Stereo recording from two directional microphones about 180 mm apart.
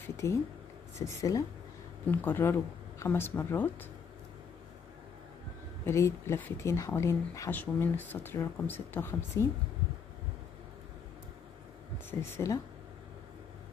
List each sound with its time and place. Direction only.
0.0 s a sound: 15° left (ahead or behind)
0.9 s speech: 20° left (ahead or behind)
5.9 s speech: 15° left (ahead or behind)
12.1 s speech: 15° left (ahead or behind)